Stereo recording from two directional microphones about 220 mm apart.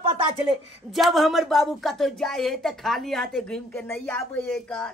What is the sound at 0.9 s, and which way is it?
Speech, centre (ahead or behind).